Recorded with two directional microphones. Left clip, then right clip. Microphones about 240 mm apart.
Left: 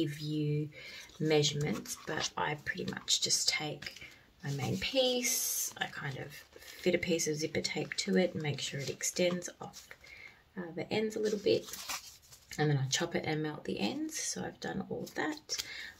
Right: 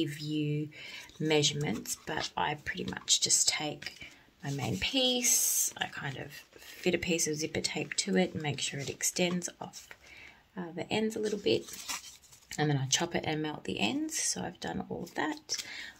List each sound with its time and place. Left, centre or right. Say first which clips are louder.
0.0 s speech: right 2 dB; right
11.9 s a sound: right 2 dB; centre
12.4 s speech: right 2 dB; right